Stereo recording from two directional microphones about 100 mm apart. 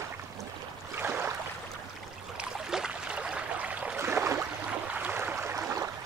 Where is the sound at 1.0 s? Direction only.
20° right (ahead or behind).